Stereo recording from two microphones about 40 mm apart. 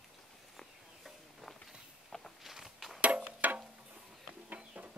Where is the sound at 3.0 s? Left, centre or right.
Right.